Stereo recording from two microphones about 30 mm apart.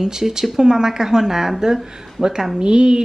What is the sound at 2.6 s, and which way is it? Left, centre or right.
Speech, right.